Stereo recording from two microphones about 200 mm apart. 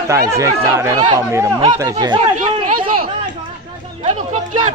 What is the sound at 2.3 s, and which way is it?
Chatter, 30° right (ahead or behind).